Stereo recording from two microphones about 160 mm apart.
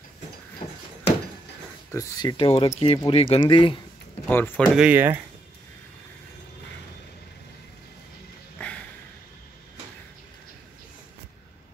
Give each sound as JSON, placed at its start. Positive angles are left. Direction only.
{"t": 1.9, "sound": "speech", "side_deg": 20}
{"t": 4.3, "sound": "speech", "side_deg": 10}
{"t": 4.7, "sound": "speech", "side_deg": -10}
{"t": 8.5, "sound": "a sound", "side_deg": 10}